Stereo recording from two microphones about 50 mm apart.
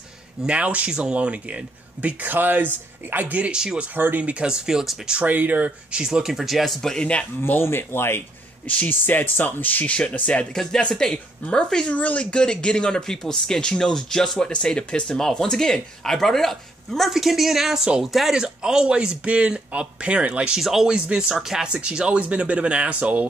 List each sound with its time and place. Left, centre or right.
0.5 s speech: right
4.2 s speech: right
5.2 s speech: right
6.0 s speech: centre
7.6 s speech: left
8.6 s speech: left
10.5 s speech: centre
11.9 s speech: left; by 18.3 s centre
18.3 s speech: centre
20.5 s speech: centre; by 23.2 s right